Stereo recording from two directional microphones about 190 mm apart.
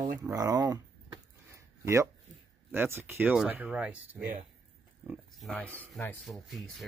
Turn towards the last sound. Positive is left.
turn(degrees=0)  # may be behind; listen again after turning